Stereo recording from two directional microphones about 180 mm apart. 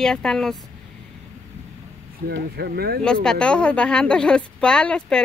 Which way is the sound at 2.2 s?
65° right (ahead or behind).